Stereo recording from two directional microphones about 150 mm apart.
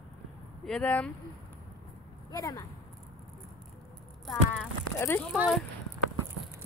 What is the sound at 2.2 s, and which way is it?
Speech, 25° left (ahead or behind).